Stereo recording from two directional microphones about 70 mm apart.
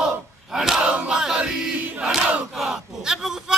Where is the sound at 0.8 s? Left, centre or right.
Centre.